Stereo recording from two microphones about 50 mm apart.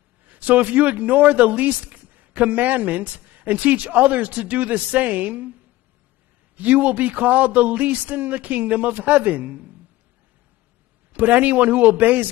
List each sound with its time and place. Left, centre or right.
0.2 s a man's voice: right
6.5 s a man's voice: right
11.1 s a man's voice: right